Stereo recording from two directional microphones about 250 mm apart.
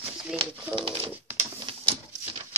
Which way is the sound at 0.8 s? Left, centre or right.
Right.